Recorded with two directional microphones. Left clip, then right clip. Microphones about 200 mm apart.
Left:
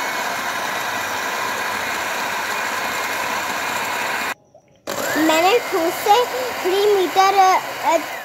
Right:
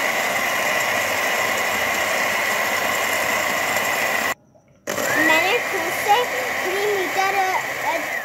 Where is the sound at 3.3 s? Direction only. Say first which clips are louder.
Right 2 dB; 15° right (ahead or behind).